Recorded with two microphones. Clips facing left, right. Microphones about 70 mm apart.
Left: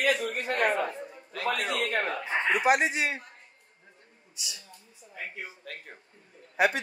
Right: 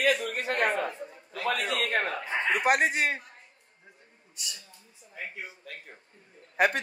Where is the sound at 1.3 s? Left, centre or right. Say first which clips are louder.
Even; left.